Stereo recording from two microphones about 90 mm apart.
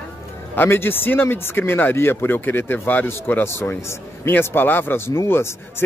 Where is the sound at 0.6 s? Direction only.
25° left (ahead or behind).